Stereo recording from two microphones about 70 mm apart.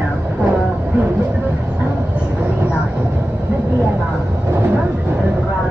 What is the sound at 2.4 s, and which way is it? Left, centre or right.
Vehicle, right.